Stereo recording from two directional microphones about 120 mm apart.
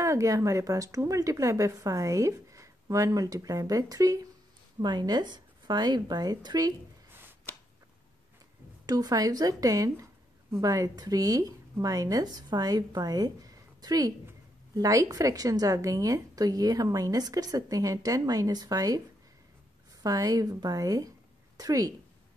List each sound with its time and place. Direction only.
0.0 s a woman's voice: 25° right (ahead or behind)
7.1 s a sound: 20° right (ahead or behind)
8.8 s a woman's voice: 30° right (ahead or behind)
20.0 s a woman's voice: 30° right (ahead or behind)